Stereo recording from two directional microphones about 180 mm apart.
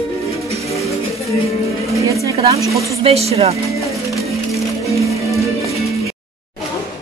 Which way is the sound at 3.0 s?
35° right (ahead or behind).